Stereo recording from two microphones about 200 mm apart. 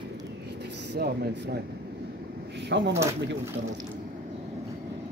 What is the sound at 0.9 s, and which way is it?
Speech, 55° right (ahead or behind).